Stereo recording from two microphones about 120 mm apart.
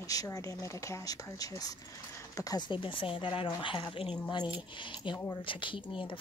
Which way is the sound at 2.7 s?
45° left (ahead or behind).